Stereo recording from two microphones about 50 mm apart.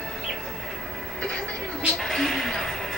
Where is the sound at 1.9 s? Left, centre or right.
Centre.